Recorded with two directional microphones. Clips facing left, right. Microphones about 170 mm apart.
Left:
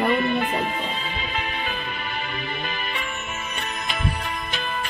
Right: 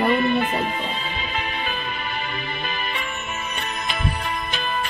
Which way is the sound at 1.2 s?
30° right (ahead or behind).